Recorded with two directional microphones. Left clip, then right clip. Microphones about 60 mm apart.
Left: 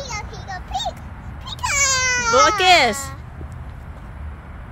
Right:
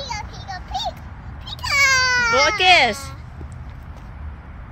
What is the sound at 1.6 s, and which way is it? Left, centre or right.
Cat, left.